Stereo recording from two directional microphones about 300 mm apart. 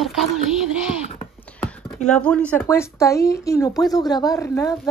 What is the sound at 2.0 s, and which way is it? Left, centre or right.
Speech, centre.